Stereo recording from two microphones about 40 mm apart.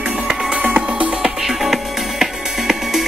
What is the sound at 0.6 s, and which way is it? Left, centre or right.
Music, right.